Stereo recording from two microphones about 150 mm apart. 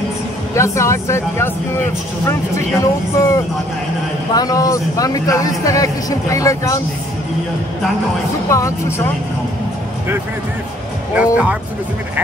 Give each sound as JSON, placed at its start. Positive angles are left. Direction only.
{"t": 0.6, "sound": "a man's voice", "side_deg": 20}
{"t": 2.8, "sound": "a man's voice", "side_deg": 20}
{"t": 8.5, "sound": "a man's voice", "side_deg": 20}
{"t": 11.1, "sound": "speech", "side_deg": -10}